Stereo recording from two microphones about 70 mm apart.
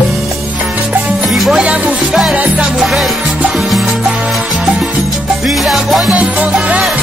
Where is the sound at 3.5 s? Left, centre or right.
Centre.